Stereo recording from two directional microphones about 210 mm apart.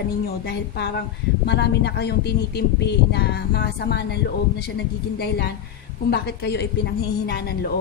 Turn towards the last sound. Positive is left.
turn(degrees=50)  # may be behind; listen again after turning